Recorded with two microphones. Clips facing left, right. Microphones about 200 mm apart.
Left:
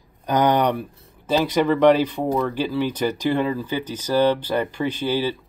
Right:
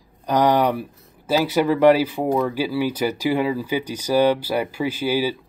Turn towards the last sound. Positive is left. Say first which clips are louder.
# right 1 dB
turn(degrees=-10)  # may be behind; listen again after turning